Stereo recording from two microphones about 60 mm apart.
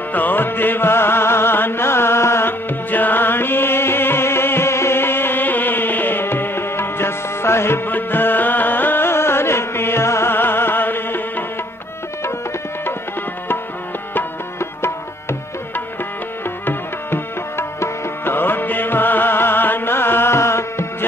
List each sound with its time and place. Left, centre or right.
0.1 s music: left
2.9 s music: left
14.1 s music: left
16.6 s tabla: left